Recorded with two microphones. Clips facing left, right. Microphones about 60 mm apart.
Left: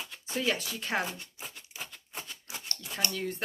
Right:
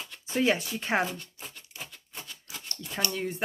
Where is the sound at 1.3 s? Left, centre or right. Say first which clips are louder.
Even; centre.